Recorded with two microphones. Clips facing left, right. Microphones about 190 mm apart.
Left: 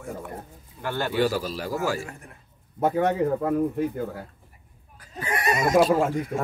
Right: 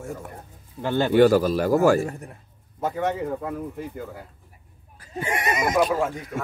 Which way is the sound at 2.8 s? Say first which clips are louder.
Left 4 dB; 55° left (ahead or behind).